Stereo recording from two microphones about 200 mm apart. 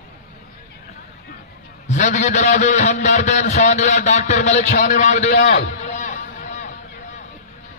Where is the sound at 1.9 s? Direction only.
35° left (ahead or behind).